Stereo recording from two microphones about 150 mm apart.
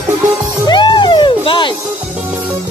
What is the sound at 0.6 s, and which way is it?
Music, 30° left (ahead or behind).